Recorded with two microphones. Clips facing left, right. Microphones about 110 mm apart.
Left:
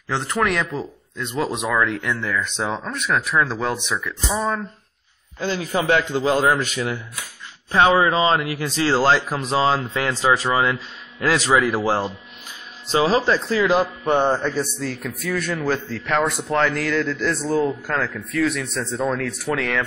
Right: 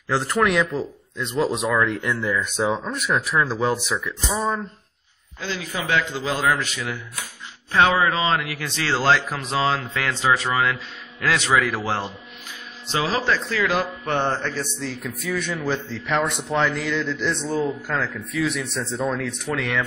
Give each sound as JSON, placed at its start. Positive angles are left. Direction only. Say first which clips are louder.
{"t": 0.1, "sound": "a man's voice", "louder": "right 2 dB", "side_deg": 0}
{"t": 5.4, "sound": "a man's voice", "louder": "left 6 dB", "side_deg": 45}
{"t": 7.7, "sound": "speech", "louder": "left 2 dB", "side_deg": 15}
{"t": 8.1, "sound": "speech", "louder": "left 4 dB", "side_deg": 35}
{"t": 14.0, "sound": "speech", "louder": "left 5 dB", "side_deg": 15}
{"t": 14.9, "sound": "a man's voice", "louder": "left 2 dB", "side_deg": -5}